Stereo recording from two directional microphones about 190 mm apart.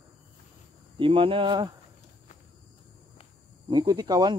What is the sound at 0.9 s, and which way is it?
Speech, 25° right (ahead or behind).